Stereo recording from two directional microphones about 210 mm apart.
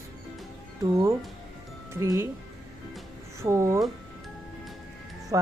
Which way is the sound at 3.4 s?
15° right (ahead or behind).